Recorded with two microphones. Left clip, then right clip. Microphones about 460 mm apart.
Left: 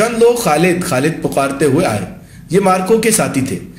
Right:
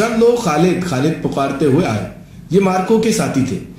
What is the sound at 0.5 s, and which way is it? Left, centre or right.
A man's voice, centre.